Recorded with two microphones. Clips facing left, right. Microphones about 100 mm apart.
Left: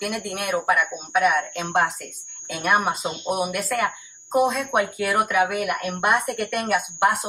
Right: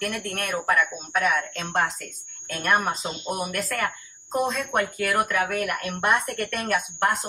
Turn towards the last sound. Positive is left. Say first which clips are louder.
# left 3 dB
turn(degrees=5)  # may be behind; listen again after turning